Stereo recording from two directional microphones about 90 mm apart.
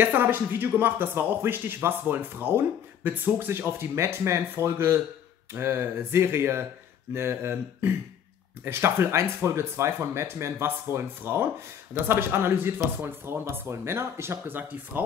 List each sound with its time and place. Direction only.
0.0 s speech: 20° right (ahead or behind)